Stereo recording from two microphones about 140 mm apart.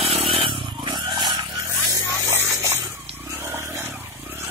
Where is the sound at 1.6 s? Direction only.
20° right (ahead or behind).